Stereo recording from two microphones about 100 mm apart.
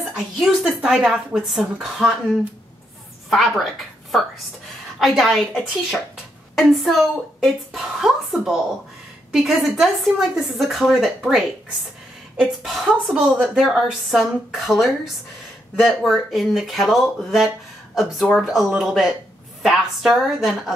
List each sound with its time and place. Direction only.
0.2 s a woman's voice: 5° right (ahead or behind)
3.3 s a woman's voice: centre (ahead or behind)
4.9 s a woman's voice: 5° right (ahead or behind)